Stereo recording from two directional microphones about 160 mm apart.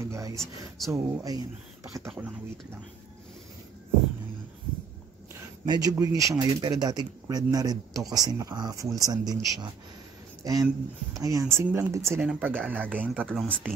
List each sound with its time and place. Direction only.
0.0 s speech: 20° right (ahead or behind)
0.4 s speech: centre (ahead or behind)
0.9 s speech: 20° right (ahead or behind)
5.7 s speech: 25° right (ahead or behind); by 13.5 s 5° right (ahead or behind)